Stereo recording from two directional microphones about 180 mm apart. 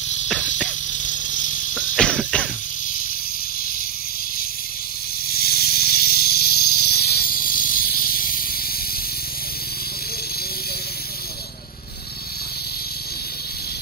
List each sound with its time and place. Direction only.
1.0 s a sound: 45° left (ahead or behind)
1.7 s cough: 5° left (ahead or behind)
5.3 s snake: 55° left (ahead or behind)